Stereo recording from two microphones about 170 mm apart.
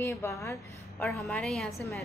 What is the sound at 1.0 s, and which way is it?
Speech, 5° left (ahead or behind).